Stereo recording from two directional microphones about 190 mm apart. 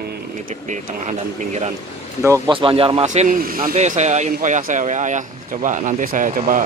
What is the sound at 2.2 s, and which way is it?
Speech, 15° right (ahead or behind).